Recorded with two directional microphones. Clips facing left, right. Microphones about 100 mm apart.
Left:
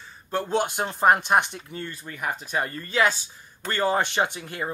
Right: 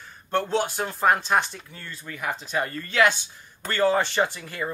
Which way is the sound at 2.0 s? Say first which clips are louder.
Right 2 dB; 45° left (ahead or behind).